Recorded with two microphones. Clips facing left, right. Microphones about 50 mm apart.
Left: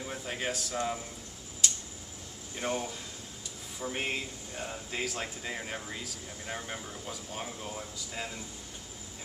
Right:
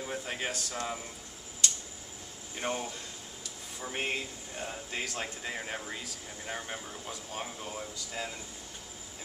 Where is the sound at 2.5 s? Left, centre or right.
Centre.